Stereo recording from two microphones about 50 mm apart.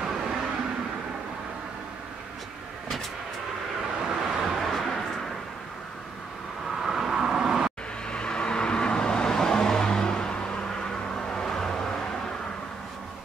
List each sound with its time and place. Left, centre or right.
0.0 s vehicle: centre
4.0 s vehicle: centre
6.8 s vehicle: centre
8.1 s vehicle: centre